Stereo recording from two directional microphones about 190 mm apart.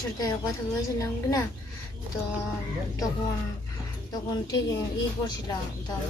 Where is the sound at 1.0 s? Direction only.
15° left (ahead or behind).